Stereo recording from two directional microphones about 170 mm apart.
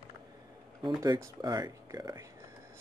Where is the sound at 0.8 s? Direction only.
20° right (ahead or behind).